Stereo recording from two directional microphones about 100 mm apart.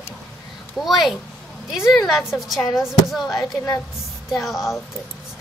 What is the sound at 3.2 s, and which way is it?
Speech, 35° left (ahead or behind).